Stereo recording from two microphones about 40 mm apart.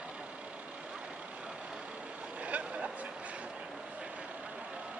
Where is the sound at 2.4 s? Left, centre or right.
Right.